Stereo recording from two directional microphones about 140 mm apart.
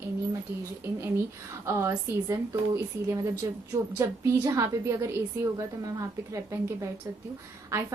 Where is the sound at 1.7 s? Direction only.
20° right (ahead or behind).